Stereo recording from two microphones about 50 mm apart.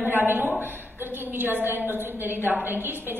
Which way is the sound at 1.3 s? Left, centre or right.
Right.